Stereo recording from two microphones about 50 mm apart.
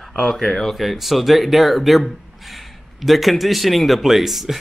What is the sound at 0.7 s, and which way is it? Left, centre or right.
Speech, centre.